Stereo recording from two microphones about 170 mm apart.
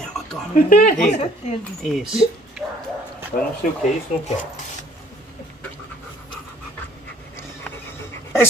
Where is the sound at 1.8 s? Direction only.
Centre (ahead or behind).